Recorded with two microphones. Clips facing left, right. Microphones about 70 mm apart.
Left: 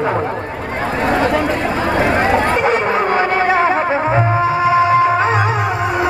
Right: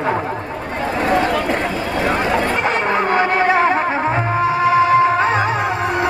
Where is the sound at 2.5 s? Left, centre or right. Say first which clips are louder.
Left 3 dB; centre.